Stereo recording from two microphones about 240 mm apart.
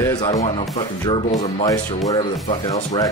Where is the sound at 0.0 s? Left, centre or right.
Centre.